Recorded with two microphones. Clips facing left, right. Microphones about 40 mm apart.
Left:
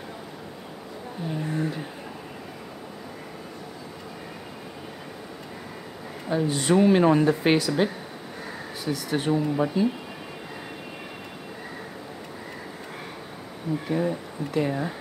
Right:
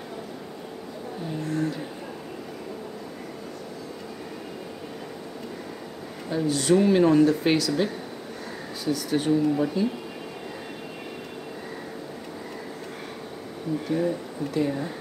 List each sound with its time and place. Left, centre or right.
1.4 s speech: centre
6.2 s speech: centre
13.8 s speech: centre